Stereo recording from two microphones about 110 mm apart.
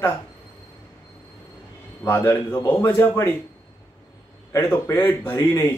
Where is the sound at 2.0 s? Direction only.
20° left (ahead or behind).